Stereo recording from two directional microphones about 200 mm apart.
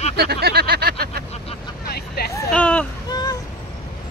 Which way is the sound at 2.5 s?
5° left (ahead or behind).